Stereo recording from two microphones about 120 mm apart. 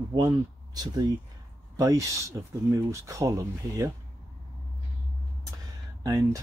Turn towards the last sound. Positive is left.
turn(degrees=-30)  # may be behind; listen again after turning